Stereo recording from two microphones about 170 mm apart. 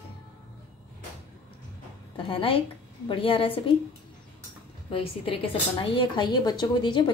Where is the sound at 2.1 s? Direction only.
30° left (ahead or behind).